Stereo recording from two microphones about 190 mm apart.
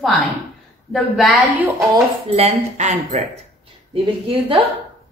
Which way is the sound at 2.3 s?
35° right (ahead or behind).